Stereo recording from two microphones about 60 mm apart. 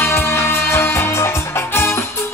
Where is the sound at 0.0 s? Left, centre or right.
Left.